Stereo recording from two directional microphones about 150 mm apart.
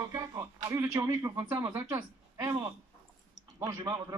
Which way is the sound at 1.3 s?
15° right (ahead or behind).